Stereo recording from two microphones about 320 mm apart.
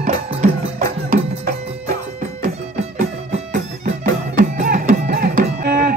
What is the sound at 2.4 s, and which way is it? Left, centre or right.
Music, right.